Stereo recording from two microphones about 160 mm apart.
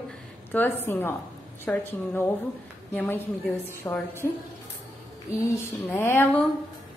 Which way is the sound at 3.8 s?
15° left (ahead or behind).